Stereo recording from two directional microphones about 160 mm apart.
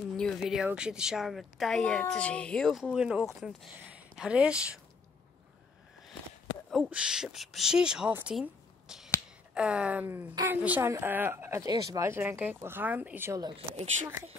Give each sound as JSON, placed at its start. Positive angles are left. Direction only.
{"t": 0.2, "sound": "speech", "side_deg": 0}
{"t": 6.7, "sound": "speech", "side_deg": -5}
{"t": 13.4, "sound": "speech", "side_deg": -30}